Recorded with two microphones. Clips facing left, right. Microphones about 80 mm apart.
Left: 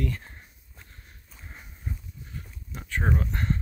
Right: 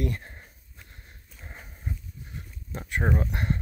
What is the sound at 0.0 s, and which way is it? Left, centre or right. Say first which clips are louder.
Walk: right 1 dB; right.